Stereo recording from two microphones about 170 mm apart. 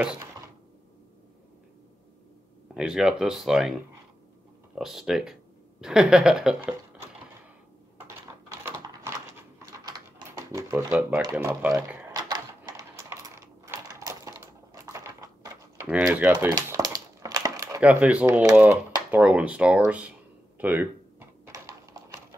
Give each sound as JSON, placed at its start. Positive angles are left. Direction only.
{"t": 2.7, "sound": "speech", "side_deg": -5}
{"t": 4.7, "sound": "speech", "side_deg": -5}
{"t": 8.5, "sound": "typing", "side_deg": -15}
{"t": 10.9, "sound": "speech", "side_deg": -5}
{"t": 12.2, "sound": "typing", "side_deg": -20}
{"t": 16.0, "sound": "speech", "side_deg": -5}
{"t": 16.6, "sound": "a sound", "side_deg": -20}
{"t": 18.5, "sound": "speech", "side_deg": -10}
{"t": 19.9, "sound": "a sound", "side_deg": -10}
{"t": 21.5, "sound": "typing", "side_deg": -20}